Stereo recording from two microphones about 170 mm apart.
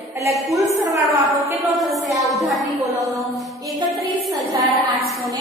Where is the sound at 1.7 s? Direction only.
Centre (ahead or behind).